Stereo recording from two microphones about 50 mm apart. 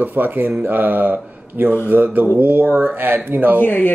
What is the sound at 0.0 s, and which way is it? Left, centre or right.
Speech, right.